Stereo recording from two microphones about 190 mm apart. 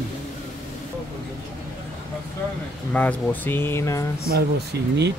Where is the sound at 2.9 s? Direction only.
10° left (ahead or behind).